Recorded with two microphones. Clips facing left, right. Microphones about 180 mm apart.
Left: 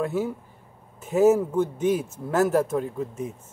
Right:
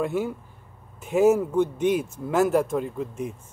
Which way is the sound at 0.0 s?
5° left (ahead or behind).